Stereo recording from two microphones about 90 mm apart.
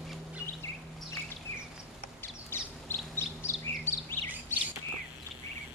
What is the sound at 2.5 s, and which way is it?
Bird, 25° left (ahead or behind).